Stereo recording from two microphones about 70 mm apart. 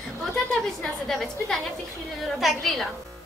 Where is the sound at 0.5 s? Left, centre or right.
Centre.